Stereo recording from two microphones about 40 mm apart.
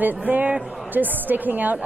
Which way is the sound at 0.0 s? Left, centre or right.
Right.